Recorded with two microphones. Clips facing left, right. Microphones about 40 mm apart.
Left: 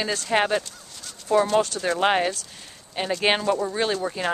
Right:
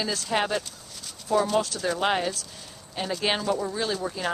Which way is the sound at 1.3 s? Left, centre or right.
Centre.